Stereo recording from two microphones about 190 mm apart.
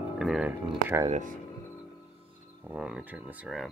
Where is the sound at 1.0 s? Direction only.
40° right (ahead or behind).